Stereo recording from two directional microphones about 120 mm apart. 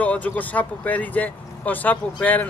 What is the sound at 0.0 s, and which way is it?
Speech, 15° left (ahead or behind).